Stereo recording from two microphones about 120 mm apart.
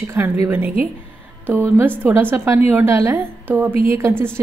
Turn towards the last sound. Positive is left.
turn(degrees=-25)  # may be behind; listen again after turning